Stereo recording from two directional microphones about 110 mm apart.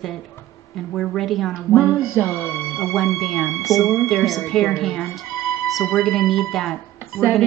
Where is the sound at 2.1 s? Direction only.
20° left (ahead or behind).